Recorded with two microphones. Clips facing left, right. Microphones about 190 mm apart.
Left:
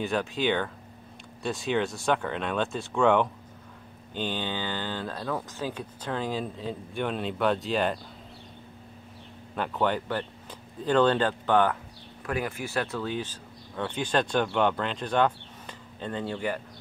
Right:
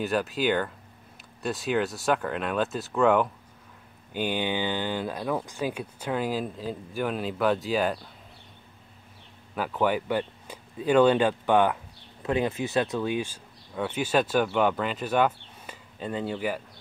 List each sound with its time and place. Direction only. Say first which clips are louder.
0.0 s speech: right 1 dB; centre (ahead or behind)
9.6 s speech: right 1 dB; 5° right (ahead or behind)